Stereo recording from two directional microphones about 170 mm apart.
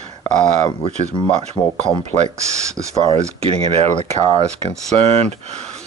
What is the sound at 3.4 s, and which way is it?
Speech, 35° right (ahead or behind).